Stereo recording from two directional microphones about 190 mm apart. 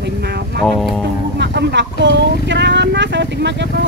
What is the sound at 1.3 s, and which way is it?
Speech, 65° right (ahead or behind).